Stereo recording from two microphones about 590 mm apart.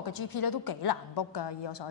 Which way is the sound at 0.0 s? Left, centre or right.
Left.